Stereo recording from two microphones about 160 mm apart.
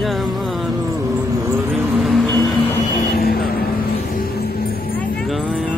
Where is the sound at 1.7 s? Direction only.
Centre (ahead or behind).